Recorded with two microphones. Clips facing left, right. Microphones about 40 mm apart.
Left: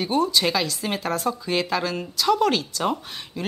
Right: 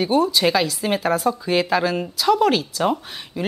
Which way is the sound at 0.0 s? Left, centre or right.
Centre.